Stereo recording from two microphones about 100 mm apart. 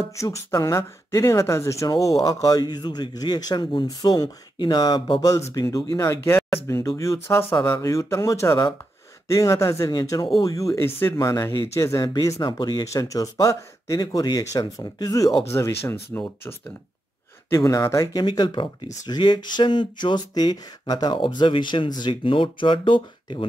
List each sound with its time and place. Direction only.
0.1 s speech: 30° left (ahead or behind)
11.4 s speech: 25° left (ahead or behind)
14.0 s speech: 45° left (ahead or behind)
15.5 s speech: 25° left (ahead or behind)
17.5 s speech: 30° left (ahead or behind)
18.2 s speech: 50° left (ahead or behind)